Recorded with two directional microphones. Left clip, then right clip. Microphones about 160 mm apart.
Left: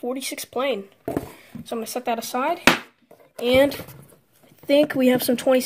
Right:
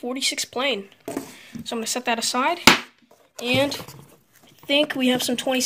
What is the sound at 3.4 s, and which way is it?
Speech, 35° left (ahead or behind).